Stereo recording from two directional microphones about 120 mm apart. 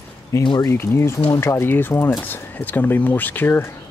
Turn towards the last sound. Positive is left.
turn(degrees=20)  # may be behind; listen again after turning